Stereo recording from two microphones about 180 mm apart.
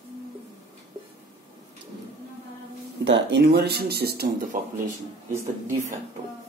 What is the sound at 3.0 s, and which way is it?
Speech, 80° right.